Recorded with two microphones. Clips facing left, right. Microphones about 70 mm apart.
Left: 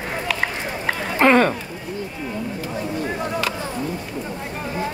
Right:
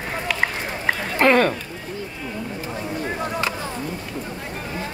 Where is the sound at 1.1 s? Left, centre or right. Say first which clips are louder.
Left 2 dB; left.